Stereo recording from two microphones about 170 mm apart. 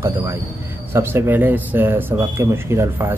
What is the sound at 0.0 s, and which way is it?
Speech, 15° right (ahead or behind).